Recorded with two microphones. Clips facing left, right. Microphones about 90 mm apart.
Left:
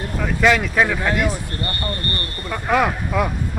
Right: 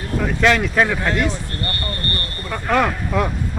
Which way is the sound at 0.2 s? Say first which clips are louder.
Even; centre (ahead or behind).